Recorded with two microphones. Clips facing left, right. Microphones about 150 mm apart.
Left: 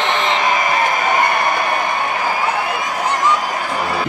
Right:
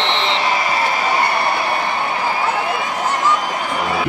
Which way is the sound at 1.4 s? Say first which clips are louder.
Left 1 dB; 15° left (ahead or behind).